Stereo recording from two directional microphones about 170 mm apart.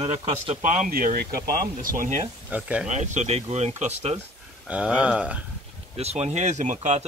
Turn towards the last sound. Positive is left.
turn(degrees=-45)  # may be behind; listen again after turning